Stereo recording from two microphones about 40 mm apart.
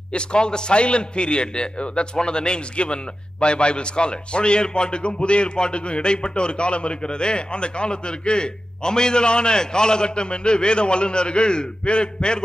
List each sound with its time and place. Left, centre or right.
0.1 s a man's voice: left